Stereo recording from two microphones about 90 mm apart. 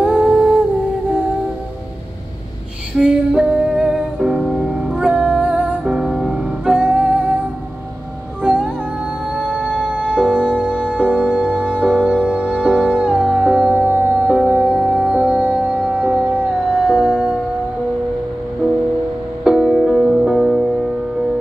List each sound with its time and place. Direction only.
0.0 s humming: 15° right (ahead or behind)
3.0 s music: 10° right (ahead or behind)
8.4 s music: 10° right (ahead or behind)
10.2 s music: 10° left (ahead or behind)
10.6 s music: 15° right (ahead or behind)
19.4 s music: 10° right (ahead or behind)